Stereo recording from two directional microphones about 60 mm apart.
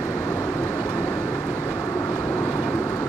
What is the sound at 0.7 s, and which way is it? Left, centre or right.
Vehicle, left.